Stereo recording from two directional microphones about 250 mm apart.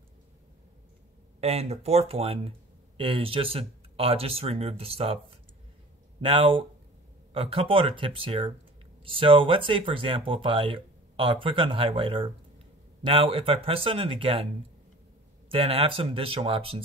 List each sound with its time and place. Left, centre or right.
1.4 s speech: right